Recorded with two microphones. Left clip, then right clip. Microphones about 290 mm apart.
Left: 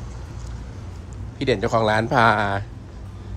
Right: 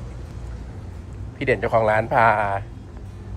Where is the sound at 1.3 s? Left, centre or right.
Centre.